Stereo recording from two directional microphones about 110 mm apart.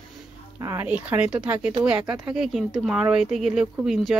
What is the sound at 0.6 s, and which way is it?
Speech, 25° right (ahead or behind).